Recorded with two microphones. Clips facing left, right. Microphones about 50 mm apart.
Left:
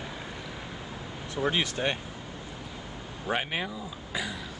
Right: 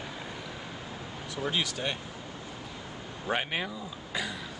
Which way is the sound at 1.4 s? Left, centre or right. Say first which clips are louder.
Left 4 dB; left.